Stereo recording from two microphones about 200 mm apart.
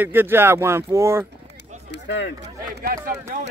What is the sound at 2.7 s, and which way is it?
Speech, 45° right (ahead or behind).